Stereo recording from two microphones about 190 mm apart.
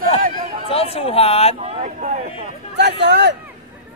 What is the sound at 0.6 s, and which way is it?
Speech, 30° left (ahead or behind).